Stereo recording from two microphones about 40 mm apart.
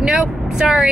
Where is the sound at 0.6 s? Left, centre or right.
Centre.